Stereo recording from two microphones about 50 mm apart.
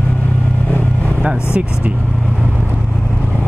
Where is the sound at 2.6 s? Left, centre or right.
Left.